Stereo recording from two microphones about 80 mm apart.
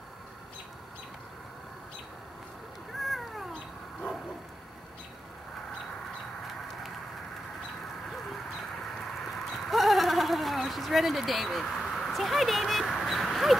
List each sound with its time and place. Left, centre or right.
3.0 s cat: centre
9.3 s sheep: centre